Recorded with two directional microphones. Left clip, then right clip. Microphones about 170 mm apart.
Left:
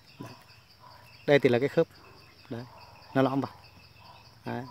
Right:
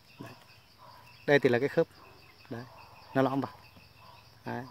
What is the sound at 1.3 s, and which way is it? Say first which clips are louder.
Speech: left 2 dB; 10° left (ahead or behind).